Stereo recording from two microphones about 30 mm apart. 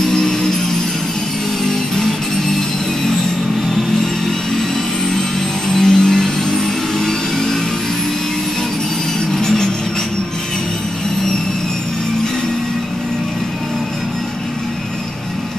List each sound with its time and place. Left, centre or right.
0.0 s music: centre
5.7 s music: centre
9.3 s a sound: centre